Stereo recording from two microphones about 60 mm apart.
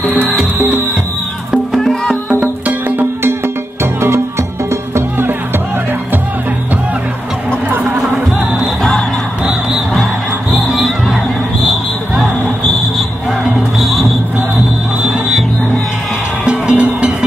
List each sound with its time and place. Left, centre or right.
1.8 s music: centre
11.6 s basketball bounce: centre
13.7 s music: centre
16.4 s music: centre